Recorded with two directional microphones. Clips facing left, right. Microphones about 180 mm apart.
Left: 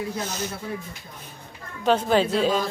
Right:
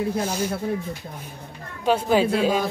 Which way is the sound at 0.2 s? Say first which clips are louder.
Right 5 dB; 10° right (ahead or behind).